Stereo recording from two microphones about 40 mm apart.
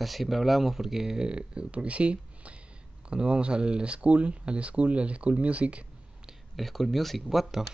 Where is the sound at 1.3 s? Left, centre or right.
Right.